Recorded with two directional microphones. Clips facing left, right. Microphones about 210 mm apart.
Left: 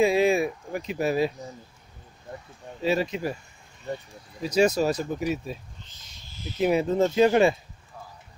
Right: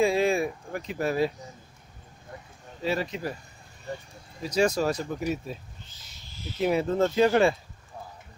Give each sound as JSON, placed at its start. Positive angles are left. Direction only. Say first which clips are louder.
{"t": 0.0, "sound": "a sound", "louder": "left 2 dB", "side_deg": 20}
{"t": 2.8, "sound": "speech", "louder": "left 4 dB", "side_deg": 15}
{"t": 4.4, "sound": "speech", "louder": "left 3 dB", "side_deg": 20}
{"t": 6.6, "sound": "speech", "louder": "left 2 dB", "side_deg": 15}